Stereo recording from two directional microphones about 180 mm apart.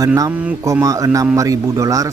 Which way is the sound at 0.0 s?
20° right (ahead or behind).